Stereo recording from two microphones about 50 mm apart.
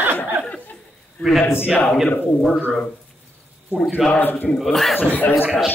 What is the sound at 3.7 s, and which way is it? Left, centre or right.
Speech, left.